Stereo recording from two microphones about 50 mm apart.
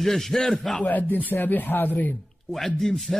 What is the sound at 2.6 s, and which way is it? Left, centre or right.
Speech, centre.